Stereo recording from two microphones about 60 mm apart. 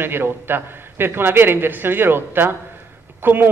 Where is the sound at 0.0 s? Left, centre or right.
Right.